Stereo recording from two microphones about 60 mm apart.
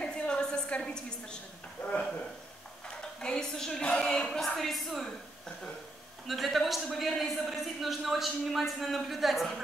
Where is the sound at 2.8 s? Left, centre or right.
Centre.